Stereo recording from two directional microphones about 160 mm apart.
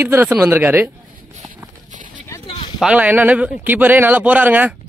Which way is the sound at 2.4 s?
35° left (ahead or behind).